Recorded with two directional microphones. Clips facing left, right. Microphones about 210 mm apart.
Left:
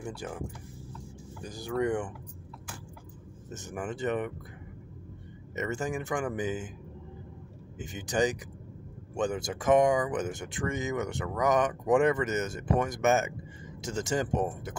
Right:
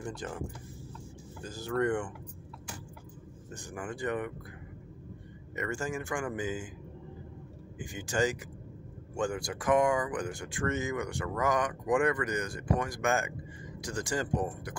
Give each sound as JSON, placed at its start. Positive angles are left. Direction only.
{"t": 0.0, "sound": "speech", "side_deg": 10}
{"t": 1.4, "sound": "speech", "side_deg": 15}
{"t": 3.5, "sound": "speech", "side_deg": 20}
{"t": 5.6, "sound": "speech", "side_deg": 20}
{"t": 7.8, "sound": "speech", "side_deg": 20}